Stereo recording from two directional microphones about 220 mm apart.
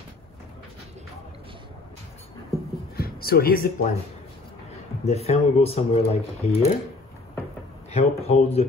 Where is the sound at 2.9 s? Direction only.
45° left (ahead or behind).